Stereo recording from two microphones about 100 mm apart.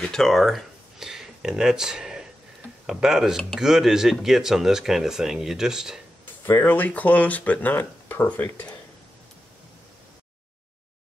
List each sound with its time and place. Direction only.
0.0 s a sound: 5° left (ahead or behind)
2.9 s speech: 5° right (ahead or behind)
6.2 s speech: 20° left (ahead or behind)